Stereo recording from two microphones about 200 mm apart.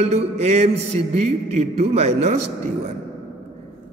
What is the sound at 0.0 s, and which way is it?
A man's voice, 35° right (ahead or behind).